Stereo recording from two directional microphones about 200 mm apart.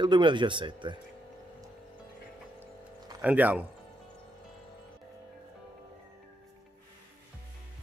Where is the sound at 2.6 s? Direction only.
10° right (ahead or behind).